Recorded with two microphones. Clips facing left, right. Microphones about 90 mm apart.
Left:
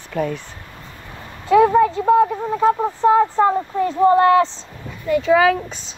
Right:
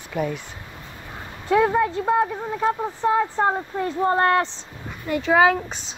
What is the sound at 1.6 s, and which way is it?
Speech, 90° left.